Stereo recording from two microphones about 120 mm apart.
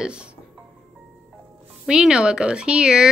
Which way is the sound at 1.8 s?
5° right (ahead or behind).